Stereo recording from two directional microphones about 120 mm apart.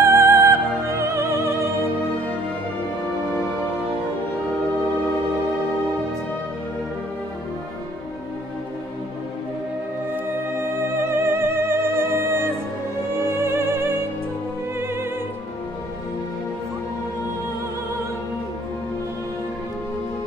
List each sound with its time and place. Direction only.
0.0 s music: 25° right (ahead or behind)
11.1 s music: 20° right (ahead or behind)